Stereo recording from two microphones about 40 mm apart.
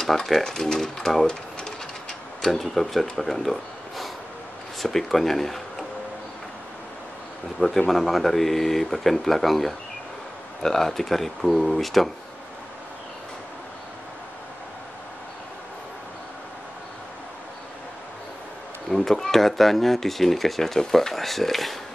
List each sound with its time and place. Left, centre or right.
0.0 s speech: centre
7.6 s a man's voice: left
7.9 s speech: centre
18.9 s speech: centre